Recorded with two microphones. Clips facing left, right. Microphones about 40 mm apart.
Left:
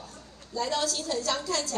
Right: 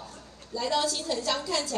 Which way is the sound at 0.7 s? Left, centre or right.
Right.